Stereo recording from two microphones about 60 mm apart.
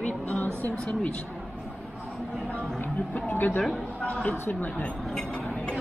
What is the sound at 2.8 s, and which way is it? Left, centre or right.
Speech, left.